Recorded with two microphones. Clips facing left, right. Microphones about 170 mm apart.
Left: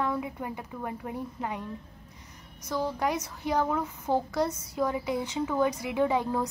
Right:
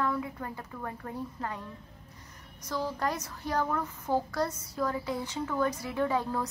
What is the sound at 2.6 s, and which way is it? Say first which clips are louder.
A child's voice: left 3 dB; 10° left (ahead or behind).